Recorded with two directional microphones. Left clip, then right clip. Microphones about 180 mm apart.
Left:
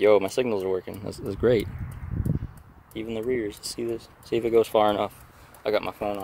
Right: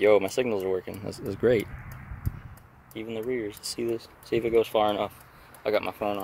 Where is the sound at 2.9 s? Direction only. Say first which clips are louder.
Left 3 dB; 35° left (ahead or behind).